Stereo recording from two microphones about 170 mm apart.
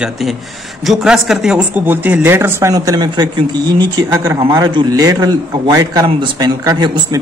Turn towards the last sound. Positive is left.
turn(degrees=-25)  # may be behind; listen again after turning